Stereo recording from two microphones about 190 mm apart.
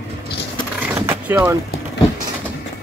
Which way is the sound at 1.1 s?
15° right (ahead or behind).